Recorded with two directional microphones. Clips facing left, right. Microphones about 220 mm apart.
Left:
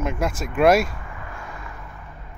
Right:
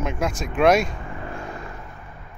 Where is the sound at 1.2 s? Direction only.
30° right (ahead or behind).